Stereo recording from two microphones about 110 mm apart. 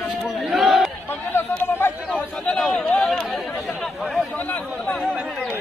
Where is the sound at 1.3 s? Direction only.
20° left (ahead or behind).